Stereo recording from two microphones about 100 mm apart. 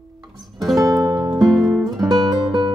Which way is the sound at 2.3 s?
40° right (ahead or behind).